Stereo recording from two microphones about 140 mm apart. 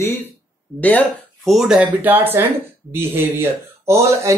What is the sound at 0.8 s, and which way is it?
Speech, 10° left (ahead or behind).